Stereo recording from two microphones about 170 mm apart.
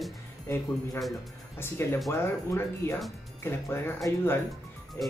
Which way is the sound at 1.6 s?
15° left (ahead or behind).